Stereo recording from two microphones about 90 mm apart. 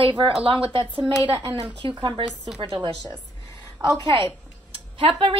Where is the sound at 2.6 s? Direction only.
65° right (ahead or behind).